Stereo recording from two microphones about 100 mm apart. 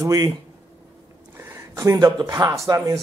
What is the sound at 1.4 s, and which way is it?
Speech, 30° right (ahead or behind).